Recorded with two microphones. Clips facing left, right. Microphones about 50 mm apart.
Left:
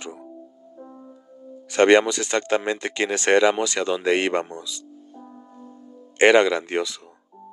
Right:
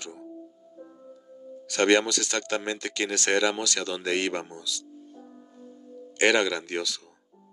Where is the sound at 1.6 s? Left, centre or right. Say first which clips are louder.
Left 6 dB; left.